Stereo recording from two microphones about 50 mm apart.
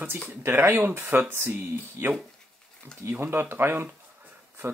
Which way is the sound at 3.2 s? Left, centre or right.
Right.